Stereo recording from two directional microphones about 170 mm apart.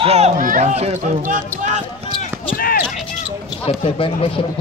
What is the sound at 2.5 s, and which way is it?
Speech, 60° left (ahead or behind).